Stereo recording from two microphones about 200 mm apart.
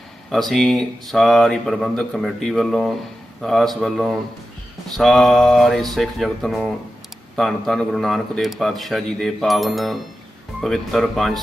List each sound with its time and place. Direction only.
0.3 s speech: centre (ahead or behind)